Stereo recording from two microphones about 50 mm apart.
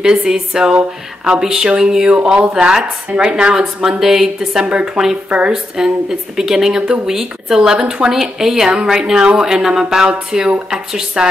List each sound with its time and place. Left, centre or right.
0.0 s speech: centre
4.6 s speech: right
5.5 s speech: centre